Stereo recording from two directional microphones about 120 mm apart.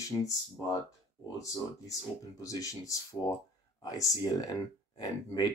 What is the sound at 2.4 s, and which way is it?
Speech, 30° left (ahead or behind).